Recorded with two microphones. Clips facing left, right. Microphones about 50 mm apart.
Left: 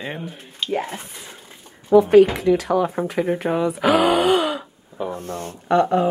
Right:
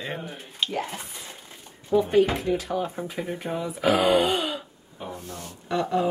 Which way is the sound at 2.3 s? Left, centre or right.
Left.